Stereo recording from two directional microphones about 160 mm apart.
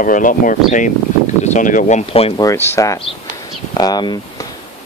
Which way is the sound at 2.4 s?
20° left (ahead or behind).